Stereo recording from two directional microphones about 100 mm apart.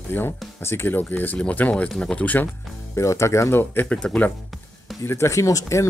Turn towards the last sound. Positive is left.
turn(degrees=30)  # may be behind; listen again after turning